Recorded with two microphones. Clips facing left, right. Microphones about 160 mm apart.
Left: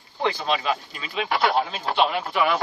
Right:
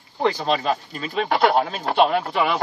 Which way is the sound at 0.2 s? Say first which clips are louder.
Right 3 dB; 40° right (ahead or behind).